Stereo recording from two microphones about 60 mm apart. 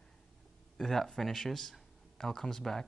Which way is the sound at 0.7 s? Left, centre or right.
Centre.